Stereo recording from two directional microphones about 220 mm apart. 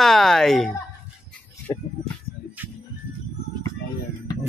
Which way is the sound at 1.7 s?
20° left (ahead or behind).